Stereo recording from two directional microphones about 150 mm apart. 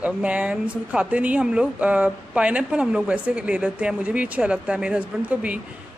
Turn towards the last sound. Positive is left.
turn(degrees=-10)  # may be behind; listen again after turning